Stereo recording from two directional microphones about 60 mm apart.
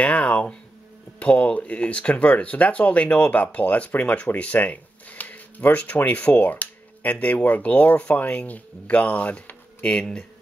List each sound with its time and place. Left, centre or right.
0.0 s speech: left
4.3 s a sound: left
5.9 s speech: left
9.8 s speech: centre